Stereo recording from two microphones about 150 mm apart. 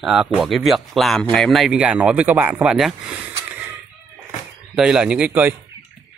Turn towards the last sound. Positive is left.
turn(degrees=-10)  # may be behind; listen again after turning